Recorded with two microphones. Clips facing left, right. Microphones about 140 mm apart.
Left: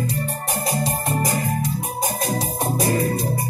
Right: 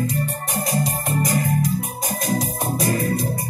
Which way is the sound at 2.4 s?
30° left (ahead or behind).